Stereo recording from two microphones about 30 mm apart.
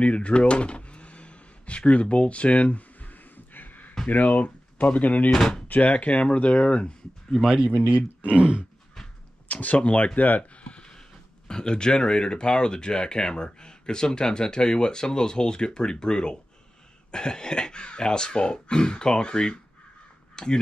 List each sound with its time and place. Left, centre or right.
0.0 s door: left
1.9 s speech: left
3.0 s a sound: left
4.1 s speech: left
5.3 s speech: centre
5.7 s speech: left
7.7 s speech: right
8.2 s speech: right
9.5 s a sound: left
10.1 s speech: left
10.5 s a sound: left
10.8 s speech: left